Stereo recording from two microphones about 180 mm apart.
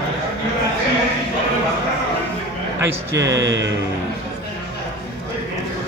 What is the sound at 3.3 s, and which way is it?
Speech, 90° right.